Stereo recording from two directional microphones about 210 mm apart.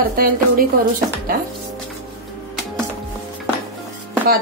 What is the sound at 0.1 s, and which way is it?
Speech, 45° right (ahead or behind).